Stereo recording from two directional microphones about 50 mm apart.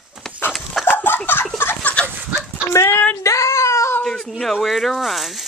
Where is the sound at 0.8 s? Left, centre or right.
Left.